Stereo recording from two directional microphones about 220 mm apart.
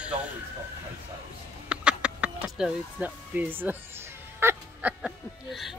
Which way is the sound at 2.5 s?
5° right (ahead or behind).